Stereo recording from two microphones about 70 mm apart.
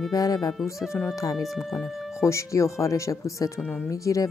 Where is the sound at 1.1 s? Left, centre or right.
Left.